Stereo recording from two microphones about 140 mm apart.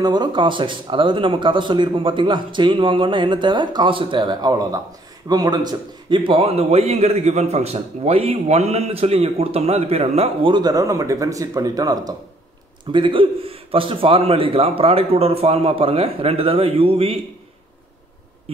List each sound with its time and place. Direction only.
0.0 s a man's voice: 30° right (ahead or behind); by 10.5 s 50° right (ahead or behind)
10.5 s speech: 25° right (ahead or behind)
12.9 s speech: 35° right (ahead or behind)